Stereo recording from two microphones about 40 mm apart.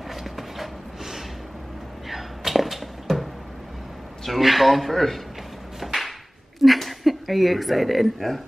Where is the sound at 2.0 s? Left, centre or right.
Centre.